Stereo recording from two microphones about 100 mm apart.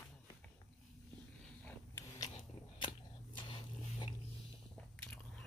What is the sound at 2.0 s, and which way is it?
Biting, 40° left (ahead or behind).